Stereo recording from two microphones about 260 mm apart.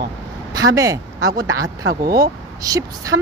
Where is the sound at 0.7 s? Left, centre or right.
Centre.